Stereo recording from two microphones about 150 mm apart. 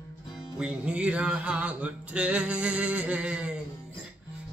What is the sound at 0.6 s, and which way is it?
Music, 5° right (ahead or behind).